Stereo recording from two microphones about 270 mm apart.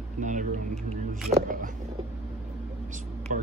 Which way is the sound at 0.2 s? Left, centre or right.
Right.